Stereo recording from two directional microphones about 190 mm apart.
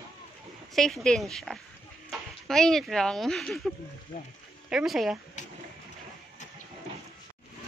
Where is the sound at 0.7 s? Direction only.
Centre (ahead or behind).